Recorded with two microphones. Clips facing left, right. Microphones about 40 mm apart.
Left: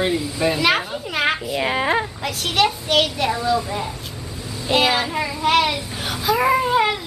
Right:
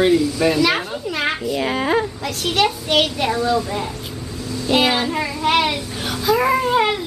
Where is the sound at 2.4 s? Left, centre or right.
Centre.